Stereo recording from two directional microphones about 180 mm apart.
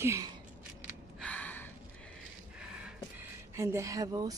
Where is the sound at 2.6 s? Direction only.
5° right (ahead or behind); by 4.3 s 20° right (ahead or behind).